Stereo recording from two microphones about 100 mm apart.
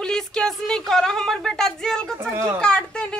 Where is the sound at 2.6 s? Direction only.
10° left (ahead or behind).